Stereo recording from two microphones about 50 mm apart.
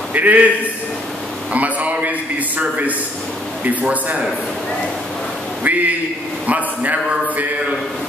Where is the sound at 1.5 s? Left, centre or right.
Right.